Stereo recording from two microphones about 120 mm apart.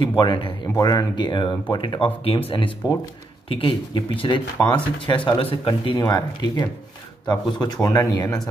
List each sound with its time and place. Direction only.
0.0 s speech: 45° left (ahead or behind)